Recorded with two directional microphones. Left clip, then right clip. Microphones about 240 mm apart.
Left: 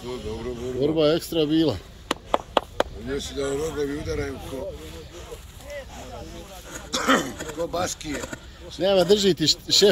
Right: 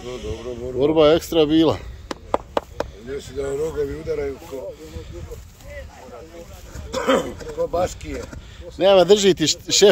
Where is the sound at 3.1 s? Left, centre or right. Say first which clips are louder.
Right 1 dB; right.